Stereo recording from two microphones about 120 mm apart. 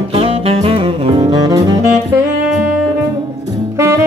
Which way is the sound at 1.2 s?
35° right (ahead or behind).